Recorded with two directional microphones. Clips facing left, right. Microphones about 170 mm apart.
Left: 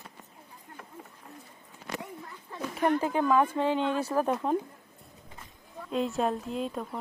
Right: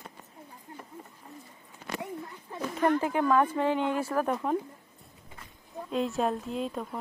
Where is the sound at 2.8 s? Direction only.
20° left (ahead or behind).